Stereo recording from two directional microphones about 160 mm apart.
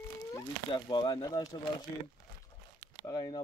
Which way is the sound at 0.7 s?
30° left (ahead or behind).